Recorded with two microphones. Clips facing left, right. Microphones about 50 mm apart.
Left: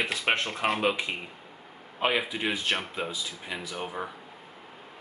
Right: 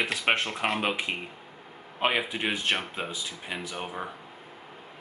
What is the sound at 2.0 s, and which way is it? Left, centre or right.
Speech, right.